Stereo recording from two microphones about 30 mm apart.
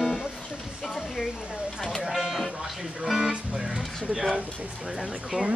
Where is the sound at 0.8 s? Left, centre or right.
Centre.